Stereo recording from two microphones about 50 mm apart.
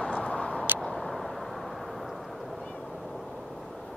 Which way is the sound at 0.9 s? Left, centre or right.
Centre.